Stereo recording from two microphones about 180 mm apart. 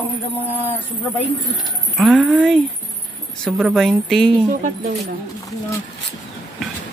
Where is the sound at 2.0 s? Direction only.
5° right (ahead or behind).